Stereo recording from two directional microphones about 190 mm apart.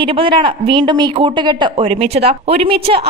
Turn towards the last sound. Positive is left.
turn(degrees=-30)  # may be behind; listen again after turning